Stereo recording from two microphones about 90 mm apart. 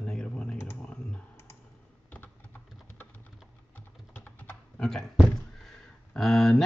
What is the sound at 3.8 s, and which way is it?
Typing, 20° left (ahead or behind).